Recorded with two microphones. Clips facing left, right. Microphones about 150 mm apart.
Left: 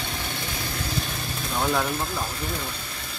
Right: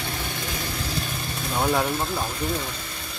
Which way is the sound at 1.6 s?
15° right (ahead or behind).